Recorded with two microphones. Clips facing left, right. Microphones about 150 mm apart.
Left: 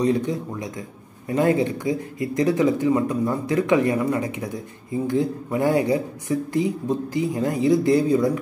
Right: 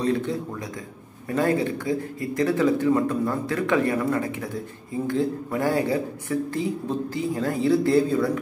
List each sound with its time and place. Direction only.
0.0 s speech: 15° left (ahead or behind)